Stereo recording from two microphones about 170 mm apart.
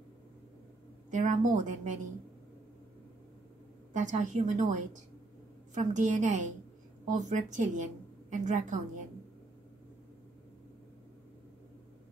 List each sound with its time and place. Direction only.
1.1 s a woman's voice: 50° right (ahead or behind)
3.9 s a woman's voice: 45° right (ahead or behind)